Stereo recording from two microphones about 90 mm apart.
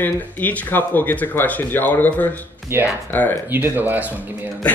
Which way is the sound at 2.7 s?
25° right (ahead or behind).